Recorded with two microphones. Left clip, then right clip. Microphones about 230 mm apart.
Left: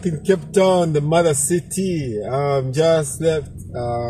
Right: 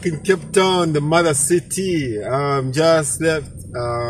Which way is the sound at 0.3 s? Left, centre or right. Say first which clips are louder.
Left 1 dB; right.